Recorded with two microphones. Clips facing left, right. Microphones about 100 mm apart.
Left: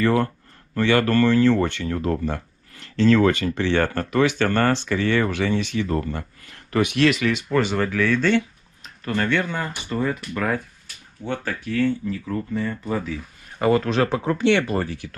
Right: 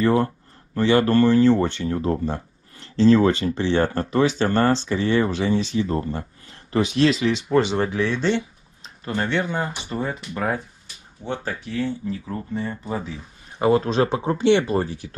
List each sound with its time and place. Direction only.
0.0 s speech: 20° right (ahead or behind)